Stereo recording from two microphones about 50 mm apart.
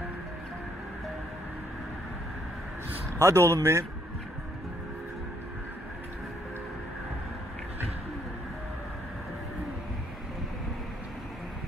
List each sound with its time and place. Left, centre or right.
3.2 s speech: right